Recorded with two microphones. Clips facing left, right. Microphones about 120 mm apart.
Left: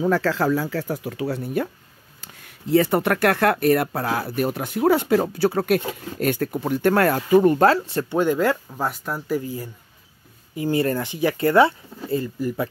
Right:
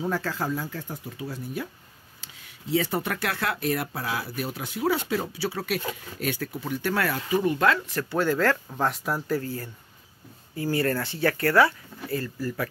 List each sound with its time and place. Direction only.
0.1 s speech: 90° left; by 8.5 s 15° left (ahead or behind)
8.6 s speech: 5° left (ahead or behind)
9.3 s speech: 15° left (ahead or behind)